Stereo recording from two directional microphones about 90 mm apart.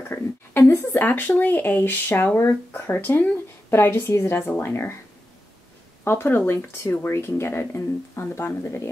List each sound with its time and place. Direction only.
0.1 s speech: 25° left (ahead or behind)
6.0 s speech: 25° left (ahead or behind)